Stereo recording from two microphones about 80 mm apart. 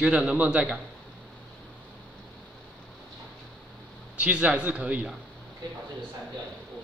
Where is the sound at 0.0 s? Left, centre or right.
Centre.